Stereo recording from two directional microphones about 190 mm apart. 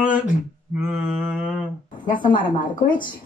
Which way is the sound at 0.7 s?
5° right (ahead or behind).